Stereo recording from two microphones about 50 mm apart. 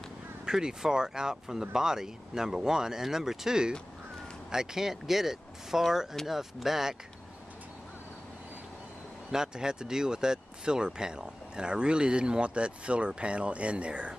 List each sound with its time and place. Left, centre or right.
0.5 s speech: centre
9.3 s speech: centre